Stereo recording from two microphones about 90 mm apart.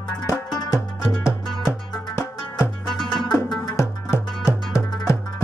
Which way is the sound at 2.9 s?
5° left (ahead or behind).